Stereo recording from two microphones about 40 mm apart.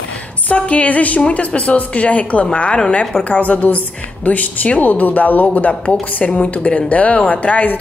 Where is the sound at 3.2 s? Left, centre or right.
Left.